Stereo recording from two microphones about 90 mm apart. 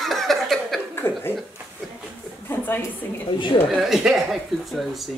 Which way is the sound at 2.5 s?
20° left (ahead or behind).